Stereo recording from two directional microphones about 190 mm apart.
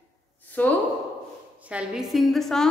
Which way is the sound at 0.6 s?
10° left (ahead or behind).